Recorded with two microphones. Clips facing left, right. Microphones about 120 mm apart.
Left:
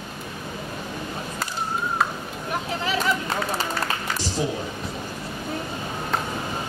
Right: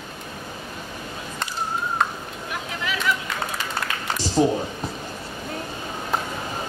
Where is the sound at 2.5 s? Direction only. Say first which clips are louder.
Left 4 dB; 35° left (ahead or behind).